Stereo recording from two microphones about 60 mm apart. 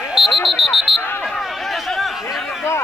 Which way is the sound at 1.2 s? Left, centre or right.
Centre.